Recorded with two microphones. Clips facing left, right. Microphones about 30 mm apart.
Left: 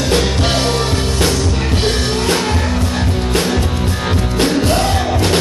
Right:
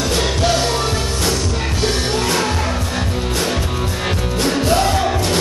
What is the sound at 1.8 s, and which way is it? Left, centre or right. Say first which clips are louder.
Music: even; left.